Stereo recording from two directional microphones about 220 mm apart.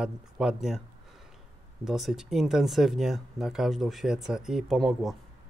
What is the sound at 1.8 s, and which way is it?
Speech, centre (ahead or behind).